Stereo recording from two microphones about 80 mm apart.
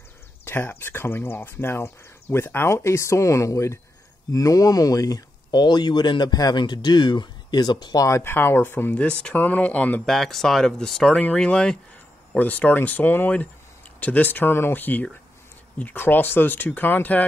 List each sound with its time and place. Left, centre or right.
0.5 s speech: left
8.2 s speech: left
10.0 s speech: centre
12.3 s speech: left